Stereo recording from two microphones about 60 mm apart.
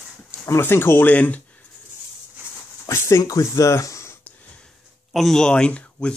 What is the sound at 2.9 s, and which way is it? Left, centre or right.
Speech, left.